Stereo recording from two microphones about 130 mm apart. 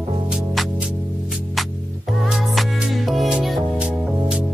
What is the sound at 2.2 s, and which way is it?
Music, 5° right (ahead or behind).